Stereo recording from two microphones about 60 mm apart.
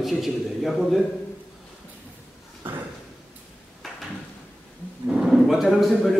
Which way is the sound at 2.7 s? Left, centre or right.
Right.